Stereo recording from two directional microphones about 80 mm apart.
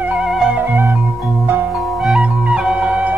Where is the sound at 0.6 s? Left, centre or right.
Right.